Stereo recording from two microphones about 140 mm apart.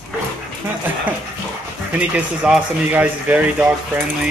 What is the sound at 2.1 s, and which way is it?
Speech, 10° right (ahead or behind).